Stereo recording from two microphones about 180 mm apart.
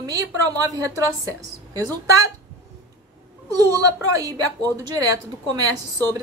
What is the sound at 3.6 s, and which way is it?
A woman's voice, 20° right (ahead or behind).